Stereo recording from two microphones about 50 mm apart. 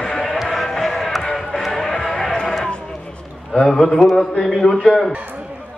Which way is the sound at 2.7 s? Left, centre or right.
Centre.